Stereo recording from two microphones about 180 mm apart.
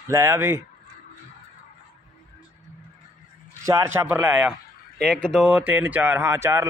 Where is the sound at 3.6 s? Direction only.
15° right (ahead or behind).